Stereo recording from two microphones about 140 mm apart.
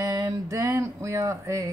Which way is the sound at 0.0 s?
25° right (ahead or behind).